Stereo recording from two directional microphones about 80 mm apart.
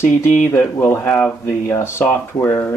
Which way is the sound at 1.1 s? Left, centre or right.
Centre.